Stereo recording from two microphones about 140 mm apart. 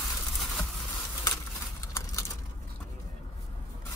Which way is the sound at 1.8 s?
25° left (ahead or behind).